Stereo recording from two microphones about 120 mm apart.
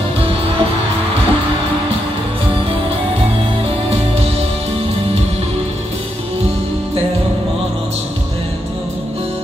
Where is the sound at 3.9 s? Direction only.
55° right (ahead or behind).